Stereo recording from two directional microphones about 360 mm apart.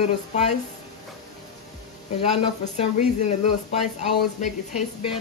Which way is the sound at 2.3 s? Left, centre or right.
Centre.